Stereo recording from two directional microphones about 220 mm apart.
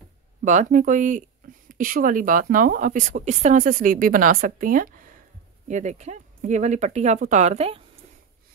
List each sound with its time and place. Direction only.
0.5 s a woman's voice: 35° right (ahead or behind)